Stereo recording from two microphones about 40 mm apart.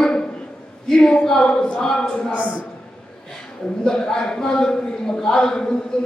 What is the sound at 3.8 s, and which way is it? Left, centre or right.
A man's voice, centre.